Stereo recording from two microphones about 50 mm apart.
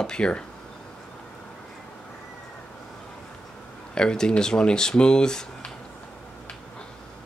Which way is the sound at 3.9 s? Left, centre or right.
Centre.